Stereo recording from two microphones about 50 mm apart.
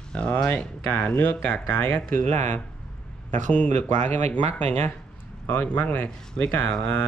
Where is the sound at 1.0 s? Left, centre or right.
Left.